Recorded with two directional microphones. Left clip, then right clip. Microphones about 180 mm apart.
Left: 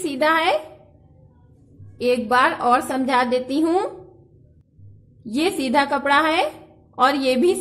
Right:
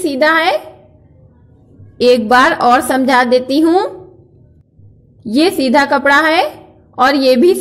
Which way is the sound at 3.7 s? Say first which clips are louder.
Right 7 dB; centre (ahead or behind).